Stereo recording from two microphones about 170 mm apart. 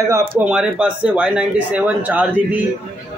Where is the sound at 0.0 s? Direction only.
15° right (ahead or behind).